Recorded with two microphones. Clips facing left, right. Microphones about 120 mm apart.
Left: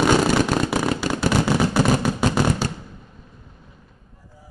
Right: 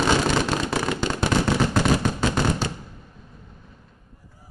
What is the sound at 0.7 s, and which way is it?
Fireworks, 10° left (ahead or behind).